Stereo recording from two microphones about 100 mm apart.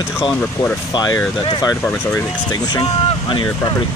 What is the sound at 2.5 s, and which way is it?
Speech, 45° left (ahead or behind).